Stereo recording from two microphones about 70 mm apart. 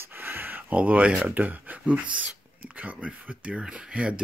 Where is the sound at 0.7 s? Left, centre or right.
Centre.